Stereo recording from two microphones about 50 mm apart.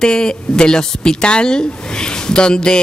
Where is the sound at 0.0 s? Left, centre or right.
Centre.